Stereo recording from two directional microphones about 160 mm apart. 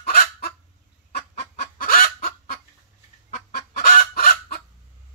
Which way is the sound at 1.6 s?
65° left (ahead or behind).